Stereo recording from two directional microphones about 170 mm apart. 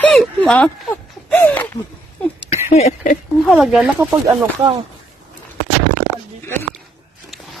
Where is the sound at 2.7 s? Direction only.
40° left (ahead or behind).